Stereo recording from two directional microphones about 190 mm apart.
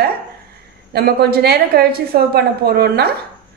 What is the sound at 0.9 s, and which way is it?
A woman's voice, 55° right (ahead or behind).